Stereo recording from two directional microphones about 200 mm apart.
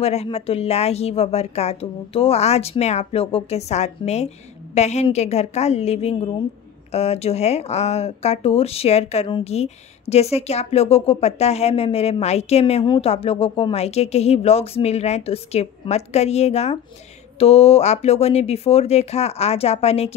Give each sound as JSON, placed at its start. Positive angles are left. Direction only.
{"t": 0.0, "sound": "speech", "side_deg": 30}